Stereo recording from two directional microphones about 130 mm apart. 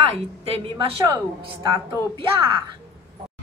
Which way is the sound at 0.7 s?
35° right (ahead or behind).